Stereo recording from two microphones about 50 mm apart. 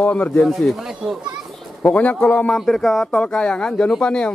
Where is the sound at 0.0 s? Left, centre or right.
Left.